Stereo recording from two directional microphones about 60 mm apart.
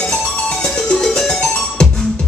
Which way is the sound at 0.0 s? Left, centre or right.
Centre.